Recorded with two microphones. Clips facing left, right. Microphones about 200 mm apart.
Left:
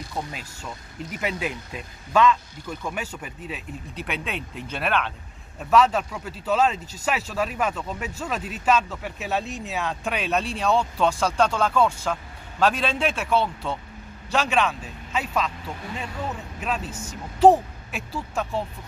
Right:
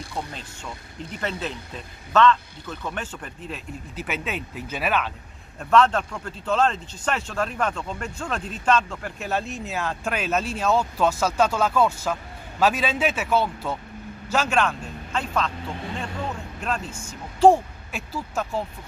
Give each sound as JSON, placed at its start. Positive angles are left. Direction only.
{"t": 0.1, "sound": "speech", "side_deg": 5}